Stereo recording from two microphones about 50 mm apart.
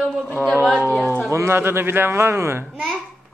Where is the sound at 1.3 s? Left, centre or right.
Right.